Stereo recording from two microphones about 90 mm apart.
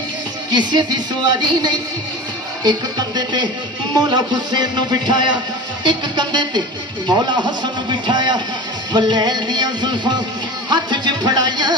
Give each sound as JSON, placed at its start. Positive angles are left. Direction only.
{"t": 0.5, "sound": "a man's voice", "side_deg": -55}